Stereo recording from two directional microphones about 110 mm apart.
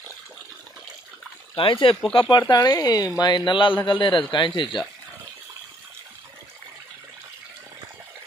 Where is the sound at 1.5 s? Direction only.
50° left (ahead or behind).